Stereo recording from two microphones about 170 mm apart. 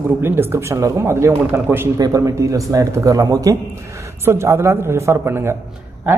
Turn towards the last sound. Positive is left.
turn(degrees=-15)  # may be behind; listen again after turning